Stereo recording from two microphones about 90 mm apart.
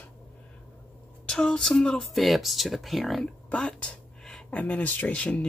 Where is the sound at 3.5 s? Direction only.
15° left (ahead or behind).